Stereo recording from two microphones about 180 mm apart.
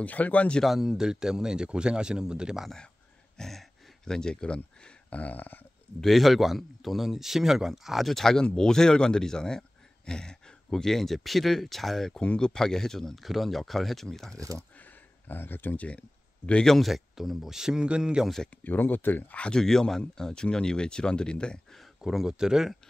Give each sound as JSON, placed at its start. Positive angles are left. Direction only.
{"t": 0.0, "sound": "speech", "side_deg": 10}